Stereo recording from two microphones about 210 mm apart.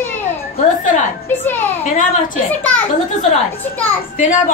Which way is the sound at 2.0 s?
40° left (ahead or behind).